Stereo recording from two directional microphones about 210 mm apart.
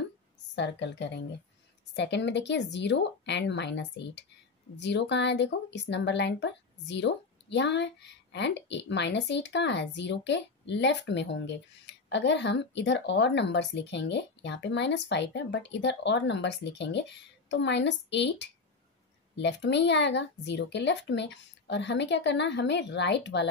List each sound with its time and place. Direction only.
0.6 s speech: 55° left (ahead or behind)